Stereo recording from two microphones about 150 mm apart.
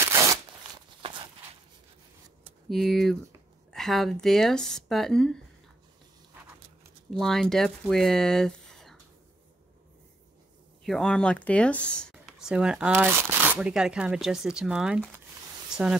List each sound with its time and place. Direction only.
0.0 s a sound: 20° right (ahead or behind)
1.0 s walk: 35° right (ahead or behind)
2.7 s speech: centre (ahead or behind)
7.1 s speech: centre (ahead or behind)
10.8 s speech: 5° left (ahead or behind)
12.4 s speech: 5° right (ahead or behind)